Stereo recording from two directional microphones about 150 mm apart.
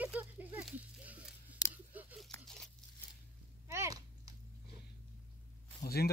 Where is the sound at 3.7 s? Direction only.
20° right (ahead or behind).